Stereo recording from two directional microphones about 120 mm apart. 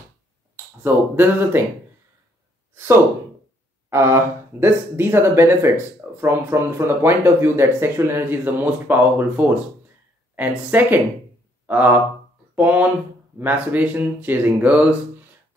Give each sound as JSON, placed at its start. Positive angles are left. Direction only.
{"t": 0.8, "sound": "speech", "side_deg": -15}
{"t": 3.9, "sound": "speech", "side_deg": -20}